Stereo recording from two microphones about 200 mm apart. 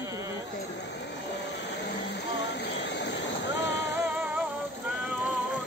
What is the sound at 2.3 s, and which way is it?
Vehicle, 55° left (ahead or behind).